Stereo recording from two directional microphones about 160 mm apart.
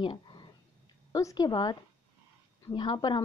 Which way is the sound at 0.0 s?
30° left (ahead or behind).